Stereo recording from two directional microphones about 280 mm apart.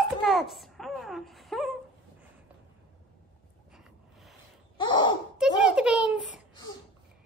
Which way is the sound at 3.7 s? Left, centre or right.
Centre.